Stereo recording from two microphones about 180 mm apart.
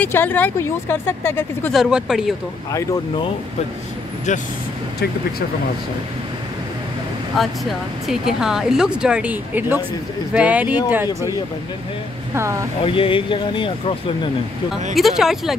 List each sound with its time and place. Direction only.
0.0 s a woman's voice: 10° left (ahead or behind)
1.7 s speech: 5° right (ahead or behind)
4.3 s speech: 40° left (ahead or behind)
7.3 s speech: centre (ahead or behind)
12.4 s speech: 15° right (ahead or behind)
12.8 s speech: 30° left (ahead or behind)
15.0 s speech: centre (ahead or behind)